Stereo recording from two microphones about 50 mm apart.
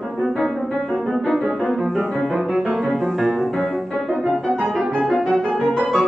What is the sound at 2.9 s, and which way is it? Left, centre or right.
Piano, centre.